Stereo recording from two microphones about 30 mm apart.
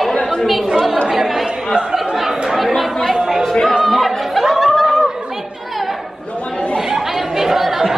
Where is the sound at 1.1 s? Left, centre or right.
Centre.